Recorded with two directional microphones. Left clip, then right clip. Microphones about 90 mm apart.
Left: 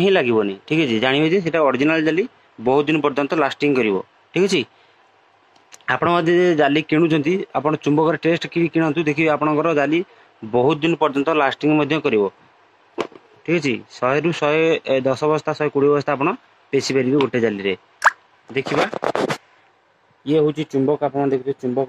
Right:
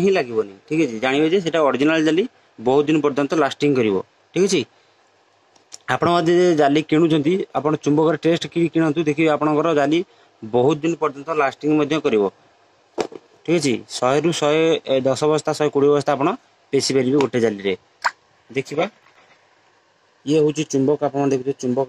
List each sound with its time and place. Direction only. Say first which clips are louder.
0.0 s speech: left 3 dB; 10° right (ahead or behind)
1.3 s speech: even; 40° right (ahead or behind); by 4.6 s 25° right (ahead or behind)
5.7 s a man's voice: even; 30° right (ahead or behind)
10.8 s speech: left 4 dB; 20° right (ahead or behind)
13.4 s a man's voice: right 1 dB; 40° right (ahead or behind)
20.2 s a man's voice: even; 20° right (ahead or behind); by 21.5 s 35° right (ahead or behind)